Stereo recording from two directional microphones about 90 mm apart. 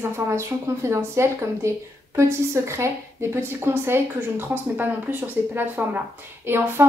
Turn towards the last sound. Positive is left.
turn(degrees=-25)  # may be behind; listen again after turning